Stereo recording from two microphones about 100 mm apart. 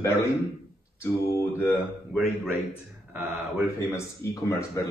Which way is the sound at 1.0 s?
25° left (ahead or behind).